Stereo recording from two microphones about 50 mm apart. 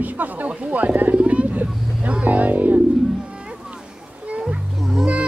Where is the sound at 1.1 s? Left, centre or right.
Right.